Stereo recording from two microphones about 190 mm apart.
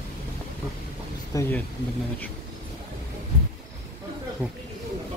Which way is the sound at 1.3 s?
20° left (ahead or behind).